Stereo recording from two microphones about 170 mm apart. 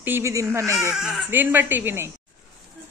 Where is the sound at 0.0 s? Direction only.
15° right (ahead or behind).